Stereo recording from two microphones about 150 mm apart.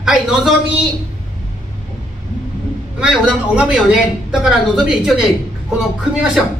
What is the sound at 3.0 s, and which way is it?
A man's voice, 5° right (ahead or behind).